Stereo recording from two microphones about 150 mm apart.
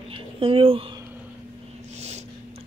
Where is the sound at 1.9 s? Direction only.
45° right (ahead or behind).